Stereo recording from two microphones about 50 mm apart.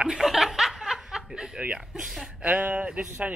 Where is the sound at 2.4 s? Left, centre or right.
Right.